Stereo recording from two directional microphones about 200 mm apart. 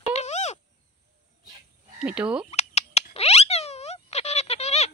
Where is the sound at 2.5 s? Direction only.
30° left (ahead or behind).